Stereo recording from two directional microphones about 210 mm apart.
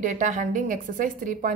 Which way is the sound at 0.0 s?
40° right (ahead or behind).